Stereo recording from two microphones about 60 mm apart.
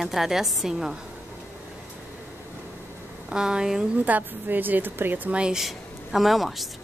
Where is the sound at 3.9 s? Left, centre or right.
Right.